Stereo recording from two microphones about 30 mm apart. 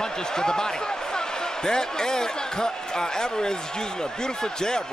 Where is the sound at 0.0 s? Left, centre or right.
Left.